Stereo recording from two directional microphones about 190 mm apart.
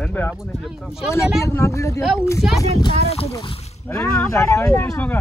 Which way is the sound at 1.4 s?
15° left (ahead or behind).